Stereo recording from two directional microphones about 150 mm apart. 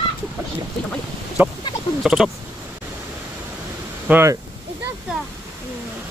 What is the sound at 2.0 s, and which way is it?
Speech, centre (ahead or behind).